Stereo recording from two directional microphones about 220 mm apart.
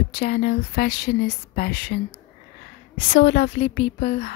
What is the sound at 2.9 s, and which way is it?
Speech, 60° left (ahead or behind).